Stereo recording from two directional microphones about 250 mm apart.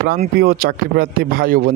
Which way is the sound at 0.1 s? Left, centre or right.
Right.